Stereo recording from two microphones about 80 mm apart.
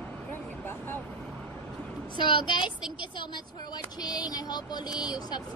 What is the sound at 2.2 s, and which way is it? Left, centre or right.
Speech, left.